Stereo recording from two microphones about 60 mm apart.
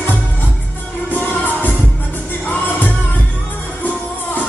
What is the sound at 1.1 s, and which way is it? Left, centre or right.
Music, left.